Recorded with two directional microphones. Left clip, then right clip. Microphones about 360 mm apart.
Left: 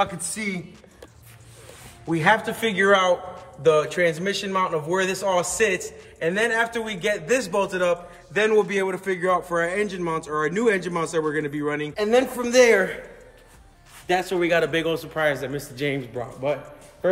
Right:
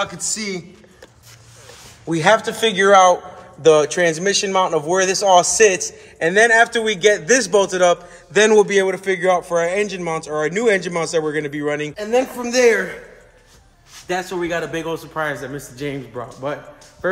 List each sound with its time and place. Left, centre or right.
0.0 s a man's voice: centre
2.0 s a man's voice: centre
14.3 s a man's voice: centre